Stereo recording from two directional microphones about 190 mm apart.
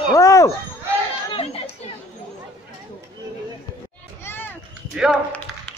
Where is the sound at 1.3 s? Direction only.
30° left (ahead or behind).